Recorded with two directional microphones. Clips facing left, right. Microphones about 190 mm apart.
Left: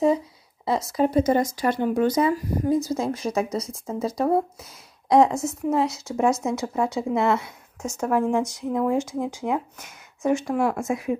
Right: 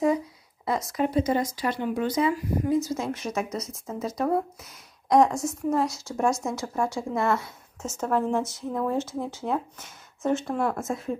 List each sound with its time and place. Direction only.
0.7 s a woman's voice: 30° left (ahead or behind)
1.1 s a woman's voice: 45° left (ahead or behind); by 11.1 s 15° left (ahead or behind)